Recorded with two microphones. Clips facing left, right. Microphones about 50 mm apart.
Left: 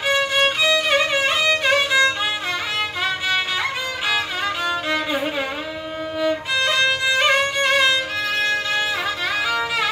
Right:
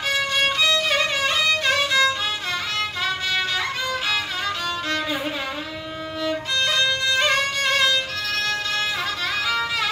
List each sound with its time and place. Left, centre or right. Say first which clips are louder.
0.1 s violin: left 3 dB; centre
4.6 s music: left 3 dB; centre
6.2 s violin: left 3 dB; centre
9.5 s music: left 2 dB; centre